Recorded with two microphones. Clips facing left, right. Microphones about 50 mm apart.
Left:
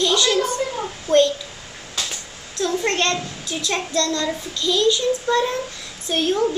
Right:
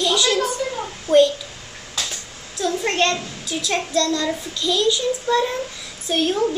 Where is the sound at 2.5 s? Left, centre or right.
Centre.